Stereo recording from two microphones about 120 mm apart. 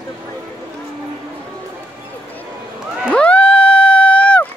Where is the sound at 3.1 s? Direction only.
10° left (ahead or behind).